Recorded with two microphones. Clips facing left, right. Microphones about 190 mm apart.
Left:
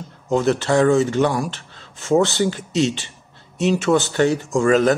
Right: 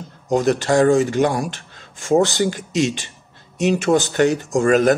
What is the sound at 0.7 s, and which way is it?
Speech, 40° right (ahead or behind).